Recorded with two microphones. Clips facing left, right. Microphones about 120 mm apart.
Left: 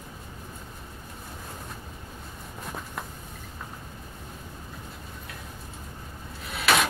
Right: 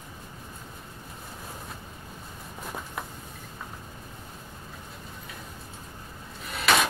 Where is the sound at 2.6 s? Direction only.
5° right (ahead or behind).